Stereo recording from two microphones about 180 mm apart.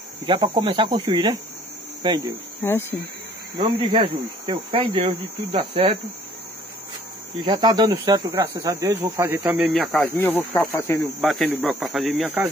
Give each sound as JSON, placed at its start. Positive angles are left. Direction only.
{"t": 0.2, "sound": "speech", "side_deg": -25}
{"t": 2.6, "sound": "speech", "side_deg": 10}
{"t": 3.5, "sound": "speech", "side_deg": -25}
{"t": 7.4, "sound": "speech", "side_deg": -25}
{"t": 9.7, "sound": "speech", "side_deg": 0}
{"t": 11.1, "sound": "speech", "side_deg": 0}